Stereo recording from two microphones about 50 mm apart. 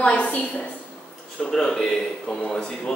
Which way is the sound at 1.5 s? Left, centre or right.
Centre.